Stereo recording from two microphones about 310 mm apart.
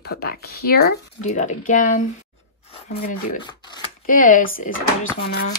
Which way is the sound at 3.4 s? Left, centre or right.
Centre.